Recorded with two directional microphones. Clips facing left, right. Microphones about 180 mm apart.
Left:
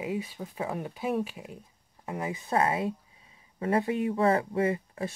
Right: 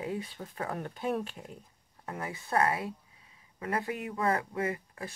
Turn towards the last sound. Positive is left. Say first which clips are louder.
# left 6 dB
turn(degrees=25)  # may be behind; listen again after turning